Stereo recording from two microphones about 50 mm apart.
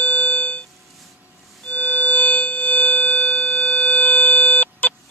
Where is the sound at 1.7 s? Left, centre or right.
Left.